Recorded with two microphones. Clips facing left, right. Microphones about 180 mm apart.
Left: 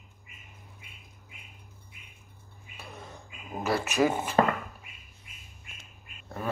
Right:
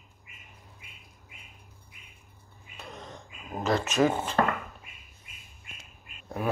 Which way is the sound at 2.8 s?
5° left (ahead or behind).